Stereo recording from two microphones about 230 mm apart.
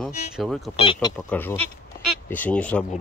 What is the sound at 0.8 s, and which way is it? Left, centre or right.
Speech, centre.